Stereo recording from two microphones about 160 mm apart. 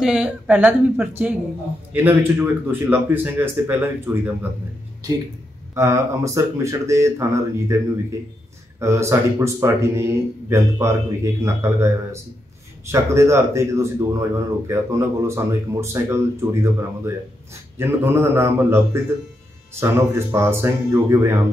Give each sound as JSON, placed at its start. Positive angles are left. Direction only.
{"t": 0.0, "sound": "speech", "side_deg": -5}
{"t": 5.8, "sound": "speech", "side_deg": -20}
{"t": 8.7, "sound": "speech", "side_deg": -20}